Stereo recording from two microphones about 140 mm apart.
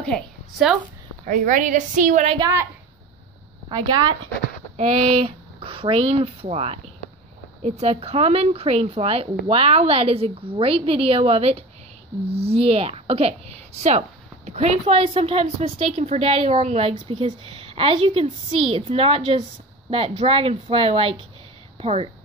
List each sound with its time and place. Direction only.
0.0 s a woman's voice: centre (ahead or behind)
1.2 s a woman's voice: 65° right (ahead or behind)
3.6 s a woman's voice: 35° right (ahead or behind)
4.7 s a woman's voice: 45° right (ahead or behind)